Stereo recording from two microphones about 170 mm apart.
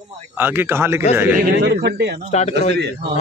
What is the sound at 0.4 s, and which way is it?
Speech, 10° right (ahead or behind).